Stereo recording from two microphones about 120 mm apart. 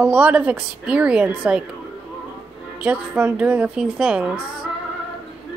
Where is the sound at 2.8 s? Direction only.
10° right (ahead or behind).